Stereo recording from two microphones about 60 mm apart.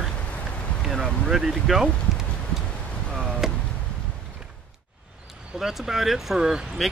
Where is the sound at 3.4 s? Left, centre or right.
Centre.